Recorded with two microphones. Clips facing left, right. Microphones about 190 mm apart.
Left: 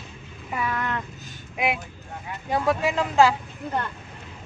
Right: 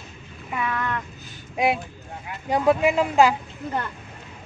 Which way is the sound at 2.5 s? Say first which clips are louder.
Right 4 dB; 20° right (ahead or behind).